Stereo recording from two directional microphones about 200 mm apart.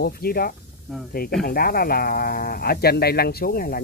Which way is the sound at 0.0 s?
50° left (ahead or behind).